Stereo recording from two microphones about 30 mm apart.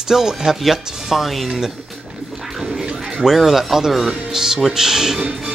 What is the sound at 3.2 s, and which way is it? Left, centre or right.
Speech, centre.